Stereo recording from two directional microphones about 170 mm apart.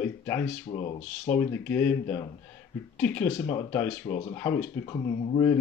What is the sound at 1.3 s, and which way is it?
Speech, 15° left (ahead or behind).